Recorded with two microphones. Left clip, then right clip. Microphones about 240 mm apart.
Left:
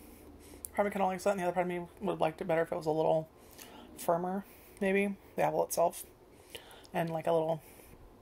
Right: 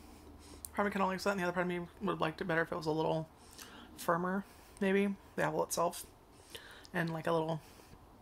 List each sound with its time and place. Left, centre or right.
0.5 s speech: centre
6.5 s a sound: right
7.2 s speech: centre